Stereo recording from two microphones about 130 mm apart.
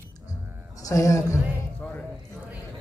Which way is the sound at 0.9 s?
25° left (ahead or behind).